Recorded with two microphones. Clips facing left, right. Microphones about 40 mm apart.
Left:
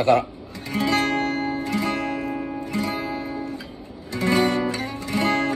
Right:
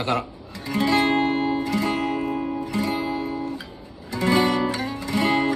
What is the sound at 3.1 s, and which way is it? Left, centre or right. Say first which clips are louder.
Guitar: right 2 dB; left.